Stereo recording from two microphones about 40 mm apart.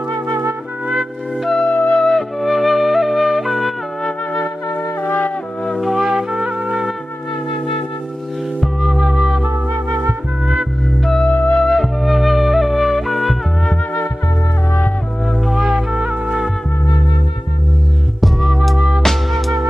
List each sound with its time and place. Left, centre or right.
1.7 s music: left
2.0 s music: centre
5.8 s wind instrument: centre
6.3 s music: right
8.8 s music: centre
10.4 s music: right
11.2 s music: left
11.6 s music: centre
15.4 s music: centre
15.9 s music: centre
18.2 s music: centre